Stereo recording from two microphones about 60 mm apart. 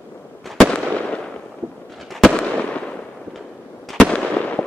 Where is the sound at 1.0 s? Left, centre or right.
Left.